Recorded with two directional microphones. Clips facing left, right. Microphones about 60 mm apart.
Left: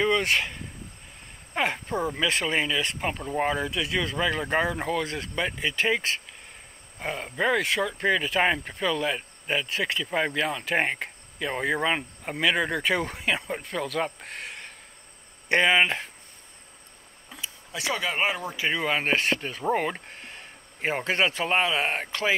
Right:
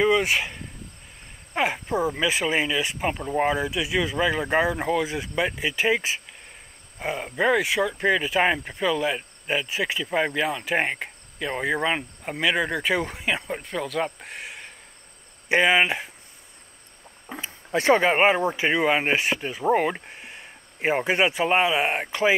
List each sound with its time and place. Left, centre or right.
0.0 s speech: centre
17.3 s speech: right; by 22.3 s centre